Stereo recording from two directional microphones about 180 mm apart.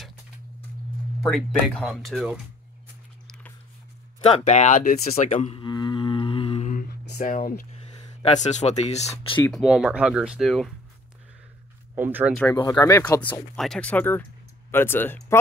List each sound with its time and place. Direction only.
1.2 s speech: 5° left (ahead or behind)
4.3 s speech: 40° left (ahead or behind)
6.7 s speech: 55° left (ahead or behind); by 9.4 s 35° left (ahead or behind)
9.5 s speech: centre (ahead or behind)
11.9 s speech: 10° right (ahead or behind)
12.7 s speech: 15° left (ahead or behind)
13.6 s speech: 5° left (ahead or behind)